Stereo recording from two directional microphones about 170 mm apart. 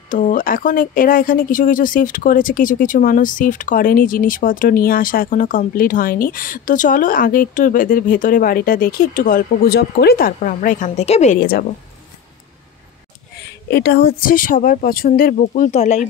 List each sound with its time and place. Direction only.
0.1 s speech: 50° left (ahead or behind)
13.4 s a woman's voice: 70° left (ahead or behind); by 16.1 s 45° left (ahead or behind)